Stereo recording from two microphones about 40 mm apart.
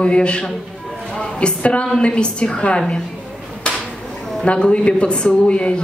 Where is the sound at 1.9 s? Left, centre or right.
Left.